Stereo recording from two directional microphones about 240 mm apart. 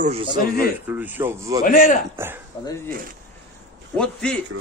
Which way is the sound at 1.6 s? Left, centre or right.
Left.